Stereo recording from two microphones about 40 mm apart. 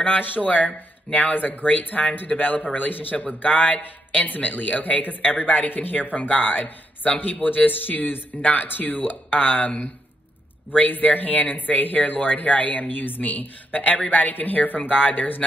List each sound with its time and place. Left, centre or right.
0.0 s speech: left
8.4 s speech: left